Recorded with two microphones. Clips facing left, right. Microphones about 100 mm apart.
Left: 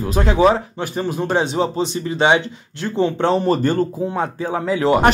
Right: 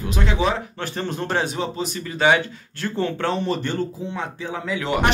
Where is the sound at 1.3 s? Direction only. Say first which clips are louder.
Left 6 dB; 25° left (ahead or behind).